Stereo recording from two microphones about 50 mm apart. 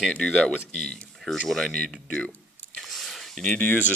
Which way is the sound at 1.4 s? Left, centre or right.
Centre.